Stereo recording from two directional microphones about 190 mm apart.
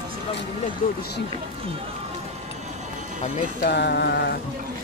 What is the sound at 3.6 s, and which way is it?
Music, 60° left (ahead or behind).